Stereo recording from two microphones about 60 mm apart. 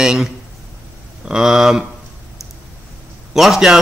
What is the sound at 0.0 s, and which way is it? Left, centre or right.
A man's voice, centre.